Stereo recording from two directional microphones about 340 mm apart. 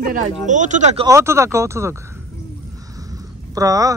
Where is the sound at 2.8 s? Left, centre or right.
Centre.